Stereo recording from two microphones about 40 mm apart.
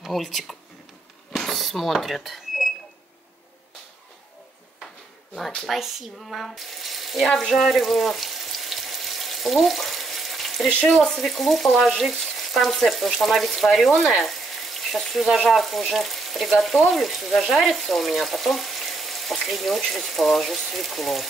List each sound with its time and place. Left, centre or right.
0.2 s frying: centre
1.3 s a sound: centre
5.7 s frying: centre
6.2 s speech: centre
7.5 s frying: centre
10.9 s frying: centre
11.2 s frying: centre
13.8 s speech: centre
15.3 s frying: centre